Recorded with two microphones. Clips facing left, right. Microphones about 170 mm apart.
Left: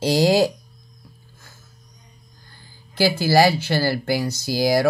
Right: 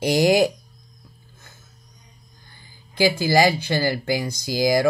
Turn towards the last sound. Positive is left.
turn(degrees=-15)  # may be behind; listen again after turning